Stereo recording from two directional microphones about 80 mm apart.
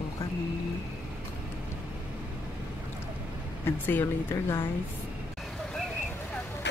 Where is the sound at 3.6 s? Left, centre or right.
Left.